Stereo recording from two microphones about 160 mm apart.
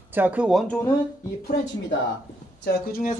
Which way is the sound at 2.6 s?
65° left (ahead or behind).